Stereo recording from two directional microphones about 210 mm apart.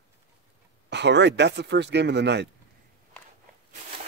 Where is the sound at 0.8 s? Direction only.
55° right (ahead or behind).